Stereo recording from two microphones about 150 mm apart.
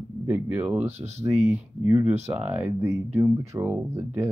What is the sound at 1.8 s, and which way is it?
Speech, 5° right (ahead or behind).